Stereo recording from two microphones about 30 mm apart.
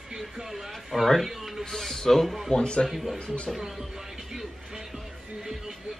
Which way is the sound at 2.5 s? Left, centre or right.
Left.